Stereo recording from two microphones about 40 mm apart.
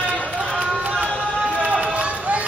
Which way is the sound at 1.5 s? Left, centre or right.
Right.